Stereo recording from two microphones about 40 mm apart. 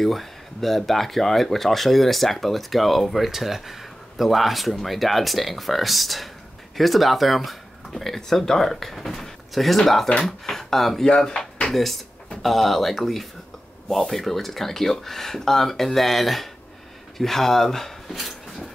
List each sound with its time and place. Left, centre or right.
0.0 s speech: centre
11.1 s speech: centre
11.7 s speech: centre
18.1 s a sound: centre